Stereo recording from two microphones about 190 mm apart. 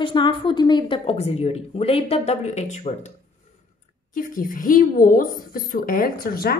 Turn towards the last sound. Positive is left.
turn(degrees=50)  # may be behind; listen again after turning